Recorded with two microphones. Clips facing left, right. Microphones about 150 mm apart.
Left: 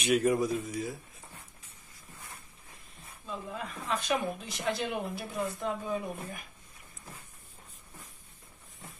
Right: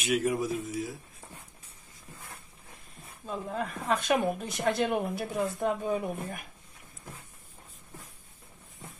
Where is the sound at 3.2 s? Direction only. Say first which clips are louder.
Right 5 dB; 50° right (ahead or behind).